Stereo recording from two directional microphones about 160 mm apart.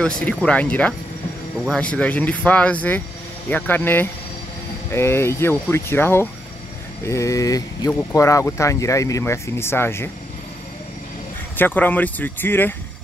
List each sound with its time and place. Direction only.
0.0 s speech: 5° left (ahead or behind)
11.5 s speech: 10° left (ahead or behind)